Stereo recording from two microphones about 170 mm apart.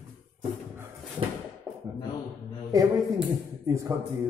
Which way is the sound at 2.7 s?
20° right (ahead or behind).